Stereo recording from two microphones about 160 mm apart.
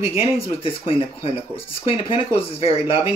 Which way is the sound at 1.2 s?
35° left (ahead or behind).